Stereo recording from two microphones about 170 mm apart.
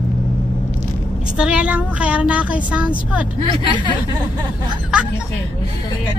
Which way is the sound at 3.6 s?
30° right (ahead or behind).